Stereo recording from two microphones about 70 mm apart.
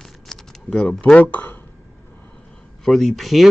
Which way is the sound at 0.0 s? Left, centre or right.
Centre.